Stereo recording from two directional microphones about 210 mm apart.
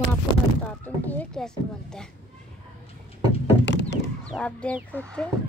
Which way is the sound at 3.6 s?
60° left (ahead or behind).